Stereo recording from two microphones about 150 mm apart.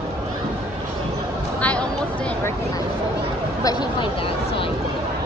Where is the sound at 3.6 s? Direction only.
30° left (ahead or behind).